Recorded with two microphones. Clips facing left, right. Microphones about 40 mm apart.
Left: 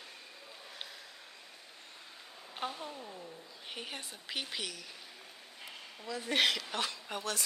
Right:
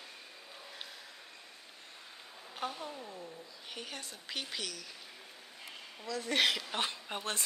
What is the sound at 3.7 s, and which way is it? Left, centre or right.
Speech, centre.